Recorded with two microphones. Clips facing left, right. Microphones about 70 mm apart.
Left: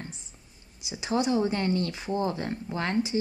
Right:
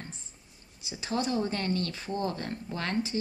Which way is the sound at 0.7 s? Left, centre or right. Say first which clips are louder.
Left 4 dB; centre.